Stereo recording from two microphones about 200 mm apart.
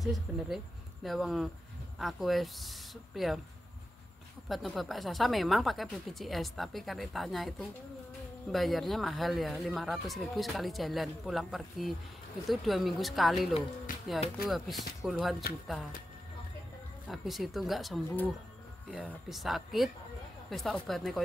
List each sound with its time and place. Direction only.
0.0 s speech: centre (ahead or behind)
4.5 s speech: centre (ahead or behind)
13.9 s music: 45° left (ahead or behind)
14.4 s speech: centre (ahead or behind)
17.1 s speech: centre (ahead or behind)